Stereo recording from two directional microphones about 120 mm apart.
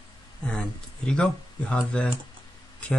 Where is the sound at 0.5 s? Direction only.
10° left (ahead or behind).